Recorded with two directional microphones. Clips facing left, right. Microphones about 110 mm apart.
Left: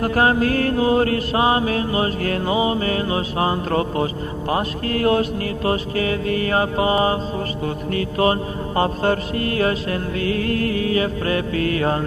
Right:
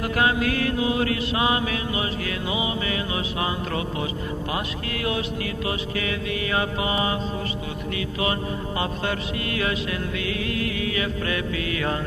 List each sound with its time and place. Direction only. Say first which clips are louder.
0.0 s mantra: left 5 dB; 40° left (ahead or behind)